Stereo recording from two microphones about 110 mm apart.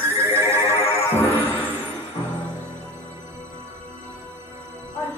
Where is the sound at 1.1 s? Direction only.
15° left (ahead or behind).